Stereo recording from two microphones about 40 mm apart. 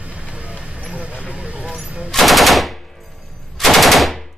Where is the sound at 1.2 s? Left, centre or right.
Right.